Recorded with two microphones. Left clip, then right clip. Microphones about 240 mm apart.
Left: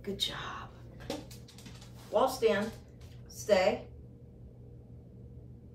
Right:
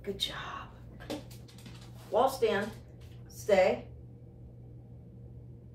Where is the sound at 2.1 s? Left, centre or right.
Centre.